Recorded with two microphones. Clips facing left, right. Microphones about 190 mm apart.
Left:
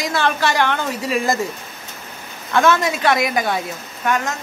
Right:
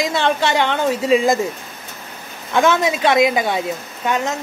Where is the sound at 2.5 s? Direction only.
15° right (ahead or behind).